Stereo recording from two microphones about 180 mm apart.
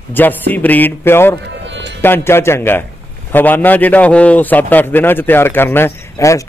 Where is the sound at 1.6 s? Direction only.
85° right.